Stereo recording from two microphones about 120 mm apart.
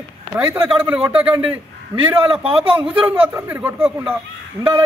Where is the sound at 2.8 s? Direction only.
10° right (ahead or behind).